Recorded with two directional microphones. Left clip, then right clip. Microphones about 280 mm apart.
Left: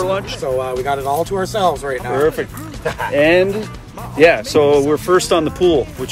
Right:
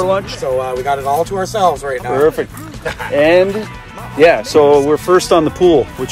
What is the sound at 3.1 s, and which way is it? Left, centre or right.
Speech, centre.